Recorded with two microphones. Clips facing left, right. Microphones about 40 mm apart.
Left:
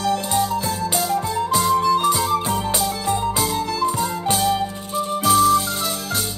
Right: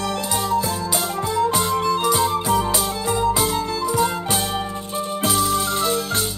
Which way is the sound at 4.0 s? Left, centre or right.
Right.